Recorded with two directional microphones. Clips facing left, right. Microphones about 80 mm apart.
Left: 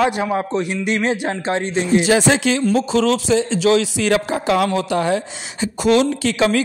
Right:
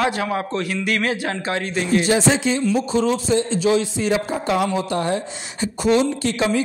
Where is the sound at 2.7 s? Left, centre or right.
Left.